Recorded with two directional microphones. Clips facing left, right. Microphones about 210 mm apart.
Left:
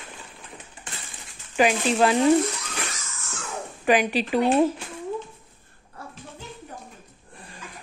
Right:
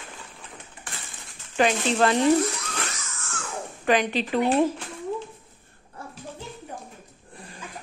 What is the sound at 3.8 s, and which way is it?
Speech, 10° left (ahead or behind).